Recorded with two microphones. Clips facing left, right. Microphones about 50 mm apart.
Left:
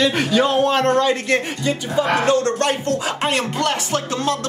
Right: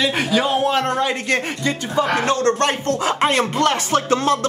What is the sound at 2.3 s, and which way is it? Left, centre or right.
Speech, right.